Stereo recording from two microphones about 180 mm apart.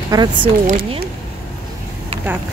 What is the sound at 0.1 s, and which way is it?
Speech, 25° right (ahead or behind).